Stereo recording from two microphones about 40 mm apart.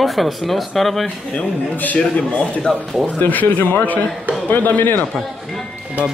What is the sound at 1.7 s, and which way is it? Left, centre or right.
Speech, left.